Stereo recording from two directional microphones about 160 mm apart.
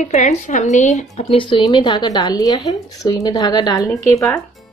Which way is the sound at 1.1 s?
35° left (ahead or behind).